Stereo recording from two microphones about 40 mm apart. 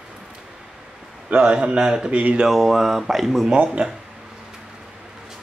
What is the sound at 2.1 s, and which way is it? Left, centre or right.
Speech, right.